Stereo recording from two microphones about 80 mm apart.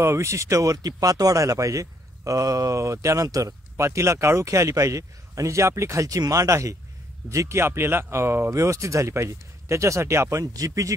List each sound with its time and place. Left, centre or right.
0.0 s speech: right